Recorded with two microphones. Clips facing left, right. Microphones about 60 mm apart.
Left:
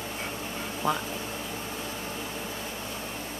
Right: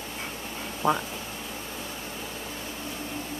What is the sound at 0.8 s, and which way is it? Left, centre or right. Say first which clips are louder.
Speech: right 3 dB; right.